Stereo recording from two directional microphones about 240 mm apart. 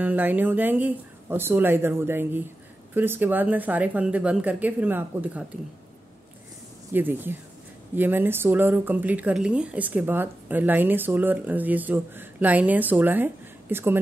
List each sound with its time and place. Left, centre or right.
0.0 s speech: centre
6.9 s speech: centre